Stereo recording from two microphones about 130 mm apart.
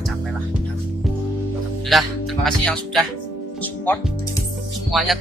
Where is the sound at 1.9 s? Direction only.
Centre (ahead or behind).